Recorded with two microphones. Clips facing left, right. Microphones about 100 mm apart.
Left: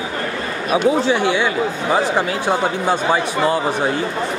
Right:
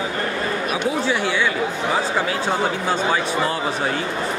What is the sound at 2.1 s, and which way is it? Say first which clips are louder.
Speech: left 3 dB; 15° left (ahead or behind).